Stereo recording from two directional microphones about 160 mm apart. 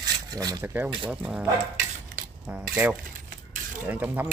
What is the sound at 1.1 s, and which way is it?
Speech, 10° right (ahead or behind).